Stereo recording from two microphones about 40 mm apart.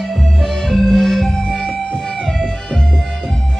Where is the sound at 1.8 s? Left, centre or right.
Centre.